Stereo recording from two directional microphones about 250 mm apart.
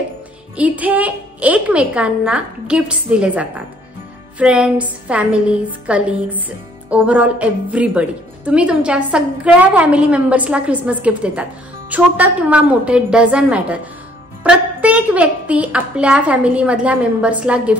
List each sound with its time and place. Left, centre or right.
0.6 s a woman's voice: centre